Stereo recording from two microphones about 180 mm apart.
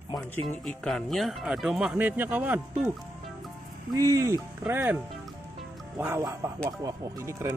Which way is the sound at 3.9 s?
20° right (ahead or behind).